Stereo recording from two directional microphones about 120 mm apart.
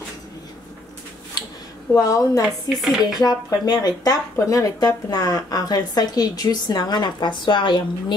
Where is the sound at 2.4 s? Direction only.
Centre (ahead or behind).